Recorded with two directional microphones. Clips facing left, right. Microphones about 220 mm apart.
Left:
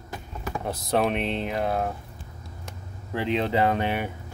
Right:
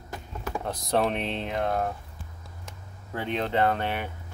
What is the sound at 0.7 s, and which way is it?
Speech, centre (ahead or behind).